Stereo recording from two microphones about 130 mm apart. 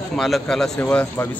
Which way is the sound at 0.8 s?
15° left (ahead or behind).